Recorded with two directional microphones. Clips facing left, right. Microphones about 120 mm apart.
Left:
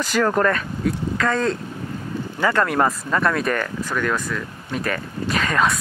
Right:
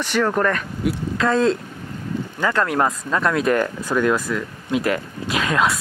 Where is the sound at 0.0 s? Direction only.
Centre (ahead or behind).